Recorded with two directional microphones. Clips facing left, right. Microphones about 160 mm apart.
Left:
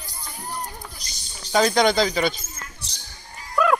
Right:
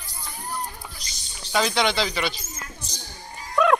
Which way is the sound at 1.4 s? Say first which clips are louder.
Left 4 dB; 40° left (ahead or behind).